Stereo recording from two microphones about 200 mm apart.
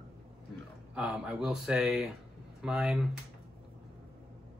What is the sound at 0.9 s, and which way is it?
Speech, 5° right (ahead or behind).